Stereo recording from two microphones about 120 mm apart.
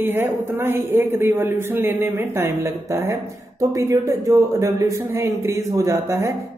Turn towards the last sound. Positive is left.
turn(degrees=-25)  # may be behind; listen again after turning